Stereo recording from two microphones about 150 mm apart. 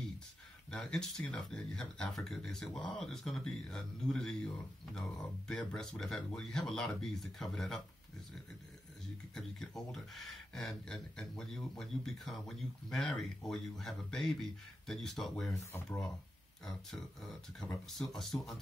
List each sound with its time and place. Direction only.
0.7 s speech: 5° left (ahead or behind)
5.5 s speech: 5° left (ahead or behind)
9.3 s speech: centre (ahead or behind)
15.5 s speech: 15° left (ahead or behind)
16.6 s speech: centre (ahead or behind)